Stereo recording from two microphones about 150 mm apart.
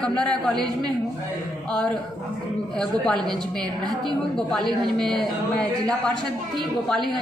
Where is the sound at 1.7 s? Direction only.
5° left (ahead or behind).